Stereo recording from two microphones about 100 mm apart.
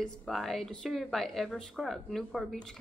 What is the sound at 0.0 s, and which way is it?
Speech, 5° left (ahead or behind).